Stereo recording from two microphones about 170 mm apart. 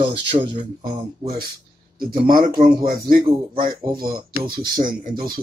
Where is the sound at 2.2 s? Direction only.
55° right (ahead or behind).